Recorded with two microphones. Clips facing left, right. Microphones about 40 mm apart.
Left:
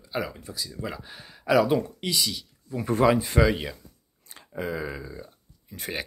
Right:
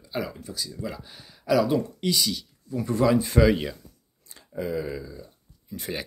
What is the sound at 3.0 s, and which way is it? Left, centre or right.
Speech, left.